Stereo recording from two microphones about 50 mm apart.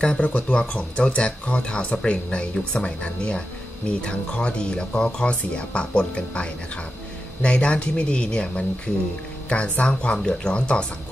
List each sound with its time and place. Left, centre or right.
0.2 s speech: left